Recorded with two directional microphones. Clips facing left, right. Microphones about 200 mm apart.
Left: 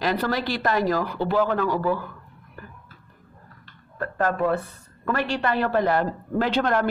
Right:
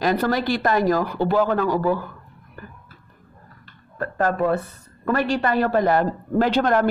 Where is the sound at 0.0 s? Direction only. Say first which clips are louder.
Right 4 dB; 45° right (ahead or behind).